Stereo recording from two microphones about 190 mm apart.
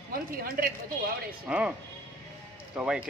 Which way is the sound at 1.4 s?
5° right (ahead or behind).